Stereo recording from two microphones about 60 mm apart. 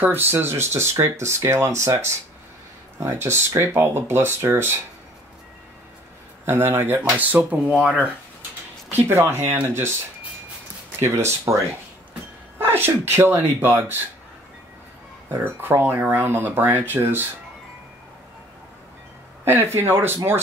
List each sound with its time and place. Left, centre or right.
0.0 s speech: right
6.4 s speech: right; by 8.1 s centre
9.2 s speech: right
11.0 s speech: right
12.5 s speech: right
15.3 s speech: right
19.4 s speech: right